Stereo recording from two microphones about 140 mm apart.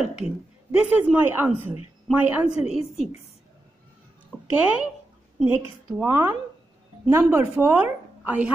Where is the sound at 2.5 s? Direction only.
45° left (ahead or behind).